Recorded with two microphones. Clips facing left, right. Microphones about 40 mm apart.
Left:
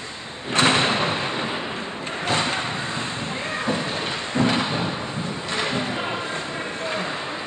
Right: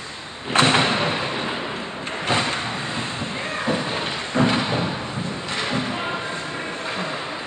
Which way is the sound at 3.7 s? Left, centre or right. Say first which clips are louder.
Right 2 dB; centre.